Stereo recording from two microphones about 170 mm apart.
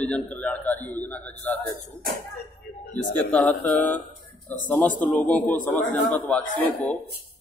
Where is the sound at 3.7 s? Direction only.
10° left (ahead or behind).